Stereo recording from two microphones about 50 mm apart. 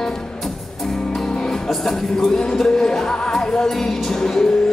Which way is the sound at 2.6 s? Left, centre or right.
Centre.